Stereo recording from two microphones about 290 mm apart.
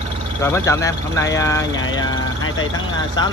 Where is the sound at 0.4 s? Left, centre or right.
Centre.